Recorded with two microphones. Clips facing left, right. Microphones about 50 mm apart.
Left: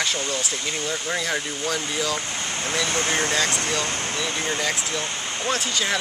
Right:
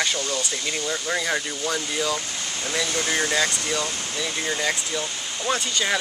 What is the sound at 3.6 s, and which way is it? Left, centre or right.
Speech, centre.